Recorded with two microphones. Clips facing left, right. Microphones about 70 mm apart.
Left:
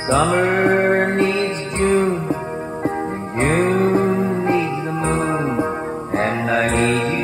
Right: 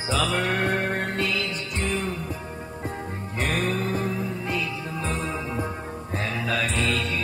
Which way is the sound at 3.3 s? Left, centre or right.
Left.